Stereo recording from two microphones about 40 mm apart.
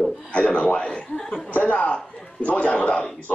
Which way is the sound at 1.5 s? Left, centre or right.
Left.